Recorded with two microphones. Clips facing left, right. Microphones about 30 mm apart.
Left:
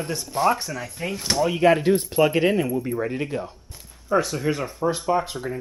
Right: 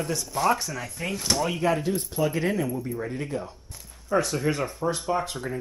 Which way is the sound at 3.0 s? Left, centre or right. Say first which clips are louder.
Left 4 dB; left.